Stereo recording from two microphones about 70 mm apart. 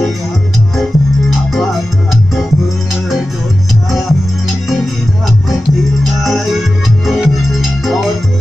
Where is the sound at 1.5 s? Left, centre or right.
Centre.